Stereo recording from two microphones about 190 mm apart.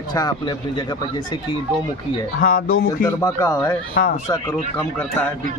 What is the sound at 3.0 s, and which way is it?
Speech, 15° left (ahead or behind).